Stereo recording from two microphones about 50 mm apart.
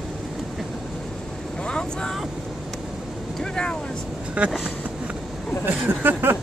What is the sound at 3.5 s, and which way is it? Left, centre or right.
Speech, centre.